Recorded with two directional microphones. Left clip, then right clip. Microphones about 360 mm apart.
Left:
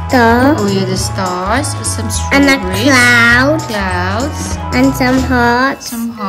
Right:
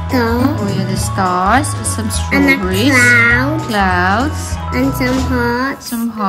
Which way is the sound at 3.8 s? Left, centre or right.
Centre.